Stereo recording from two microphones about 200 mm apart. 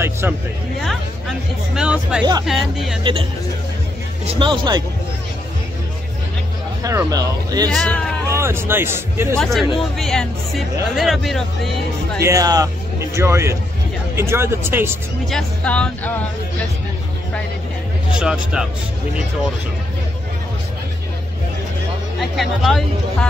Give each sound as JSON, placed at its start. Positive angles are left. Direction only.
{"t": 1.8, "sound": "speech", "side_deg": -5}
{"t": 3.0, "sound": "speech", "side_deg": -25}
{"t": 4.4, "sound": "speech", "side_deg": -20}
{"t": 6.8, "sound": "speech", "side_deg": -15}
{"t": 7.7, "sound": "speech", "side_deg": 5}
{"t": 8.3, "sound": "speech", "side_deg": -15}
{"t": 9.4, "sound": "speech", "side_deg": 0}
{"t": 12.2, "sound": "speech", "side_deg": -15}
{"t": 15.2, "sound": "speech", "side_deg": 5}
{"t": 18.2, "sound": "speech", "side_deg": -5}
{"t": 22.2, "sound": "speech", "side_deg": 0}